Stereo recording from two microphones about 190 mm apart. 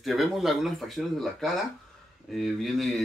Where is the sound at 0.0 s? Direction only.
Centre (ahead or behind).